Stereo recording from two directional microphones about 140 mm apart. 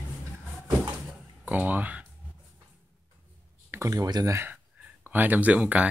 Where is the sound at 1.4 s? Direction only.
10° right (ahead or behind).